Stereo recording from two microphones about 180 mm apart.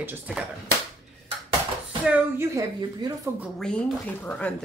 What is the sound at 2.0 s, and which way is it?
Speech, 5° right (ahead or behind).